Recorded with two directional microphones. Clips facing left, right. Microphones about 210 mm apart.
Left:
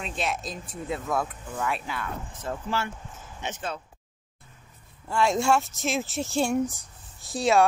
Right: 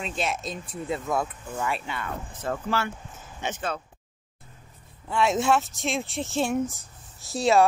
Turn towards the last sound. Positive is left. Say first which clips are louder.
# right 1 dB
turn(degrees=0)  # may be behind; listen again after turning